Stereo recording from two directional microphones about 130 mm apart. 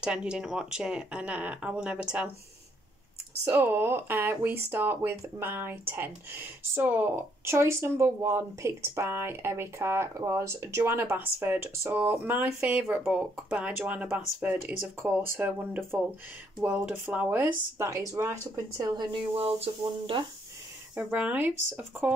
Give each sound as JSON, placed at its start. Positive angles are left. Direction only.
{"t": 0.0, "sound": "speech", "side_deg": -5}
{"t": 3.4, "sound": "speech", "side_deg": -15}
{"t": 18.9, "sound": "speech", "side_deg": -45}
{"t": 20.9, "sound": "speech", "side_deg": -10}